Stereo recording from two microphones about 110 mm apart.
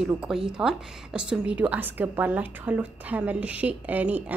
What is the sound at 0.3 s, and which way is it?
A woman's voice, 5° right (ahead or behind).